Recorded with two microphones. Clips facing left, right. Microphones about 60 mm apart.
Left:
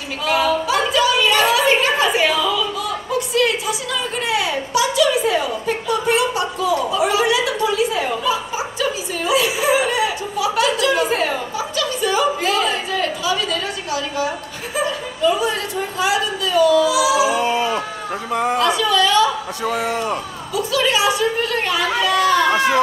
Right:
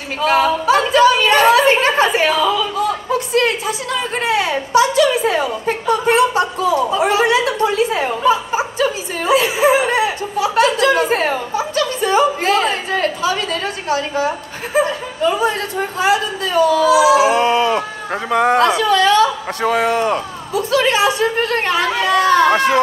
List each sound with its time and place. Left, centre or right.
0.2 s a sound: right
16.0 s speech: right
17.4 s a sound: right
18.3 s speech: right
18.7 s speech: right
20.5 s speech: right